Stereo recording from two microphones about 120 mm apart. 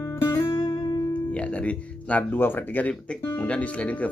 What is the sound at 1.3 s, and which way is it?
Speech, 10° left (ahead or behind).